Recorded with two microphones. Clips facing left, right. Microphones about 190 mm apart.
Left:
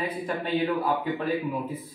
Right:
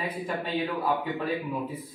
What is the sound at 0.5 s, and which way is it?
Speech, centre (ahead or behind).